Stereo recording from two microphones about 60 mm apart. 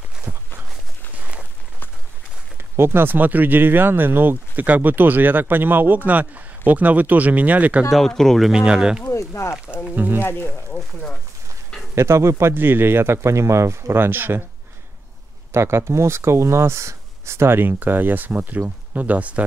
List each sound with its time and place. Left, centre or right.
2.5 s speech: right
8.0 s speech: centre
8.5 s speech: centre
9.1 s speech: left
9.9 s speech: right
10.2 s speech: left
11.9 s speech: right
13.9 s speech: right
15.5 s speech: right